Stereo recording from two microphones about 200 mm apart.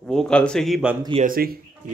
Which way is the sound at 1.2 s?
45° right (ahead or behind).